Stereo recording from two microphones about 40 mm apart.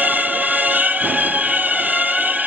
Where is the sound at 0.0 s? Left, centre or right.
Right.